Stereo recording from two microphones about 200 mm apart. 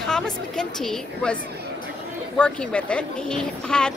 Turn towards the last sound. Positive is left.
turn(degrees=5)  # may be behind; listen again after turning